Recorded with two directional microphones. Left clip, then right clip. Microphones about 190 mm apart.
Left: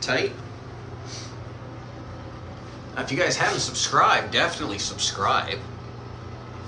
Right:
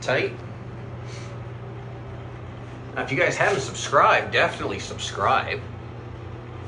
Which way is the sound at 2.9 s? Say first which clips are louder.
Right 1 dB; 15° left (ahead or behind).